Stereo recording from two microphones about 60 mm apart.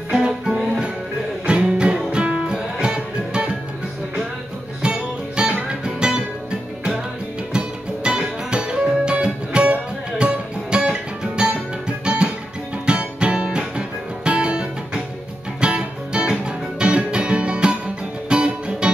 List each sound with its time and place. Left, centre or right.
0.2 s music: centre
4.8 s music: centre
7.5 s music: centre